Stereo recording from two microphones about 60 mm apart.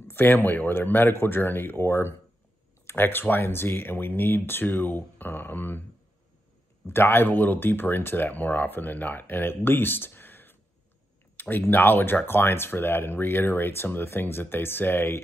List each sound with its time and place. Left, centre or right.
0.1 s speech: left
6.9 s speech: left